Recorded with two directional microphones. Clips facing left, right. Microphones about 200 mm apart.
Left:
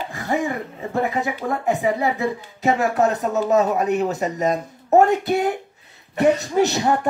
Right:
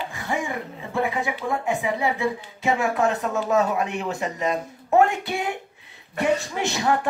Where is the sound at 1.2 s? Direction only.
40° left (ahead or behind).